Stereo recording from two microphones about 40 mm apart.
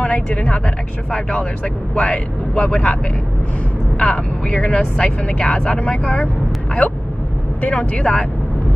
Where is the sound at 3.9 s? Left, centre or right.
Left.